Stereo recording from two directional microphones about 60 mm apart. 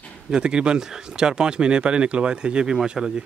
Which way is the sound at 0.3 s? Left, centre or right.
Centre.